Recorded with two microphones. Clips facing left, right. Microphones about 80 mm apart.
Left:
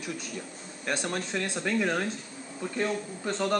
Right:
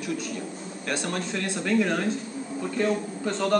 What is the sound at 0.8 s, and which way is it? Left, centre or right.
Speech, centre.